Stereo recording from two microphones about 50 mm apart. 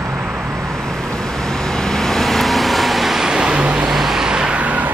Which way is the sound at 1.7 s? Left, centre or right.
Centre.